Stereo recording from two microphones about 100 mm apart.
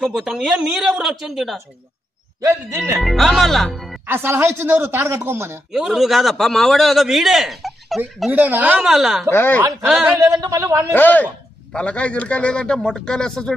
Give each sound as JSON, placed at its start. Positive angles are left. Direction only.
{"t": 0.0, "sound": "a man's voice", "side_deg": -5}
{"t": 3.0, "sound": "a man's voice", "side_deg": 0}
{"t": 4.0, "sound": "speech", "side_deg": -20}
{"t": 5.7, "sound": "a man's voice", "side_deg": -5}
{"t": 8.3, "sound": "a woman's voice", "side_deg": -20}
{"t": 8.8, "sound": "a man's voice", "side_deg": -5}
{"t": 9.3, "sound": "speech", "side_deg": 20}
{"t": 9.8, "sound": "a man's voice", "side_deg": -5}
{"t": 10.1, "sound": "a man's voice", "side_deg": -30}
{"t": 10.9, "sound": "speech", "side_deg": 20}